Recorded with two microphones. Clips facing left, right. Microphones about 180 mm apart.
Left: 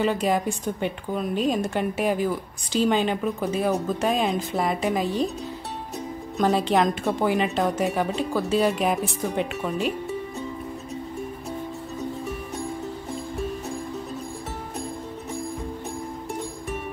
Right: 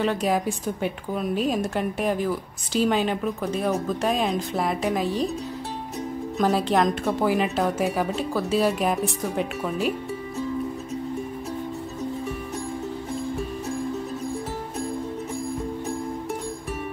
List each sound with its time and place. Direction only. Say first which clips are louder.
0.0 s a woman's voice: even; centre (ahead or behind)
6.3 s a woman's voice: left 1 dB; centre (ahead or behind)